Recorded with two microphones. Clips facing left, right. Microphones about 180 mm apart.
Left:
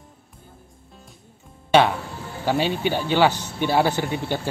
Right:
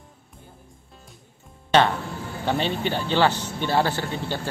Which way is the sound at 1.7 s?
10° left (ahead or behind).